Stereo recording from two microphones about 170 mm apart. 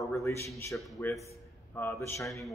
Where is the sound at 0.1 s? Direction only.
15° left (ahead or behind).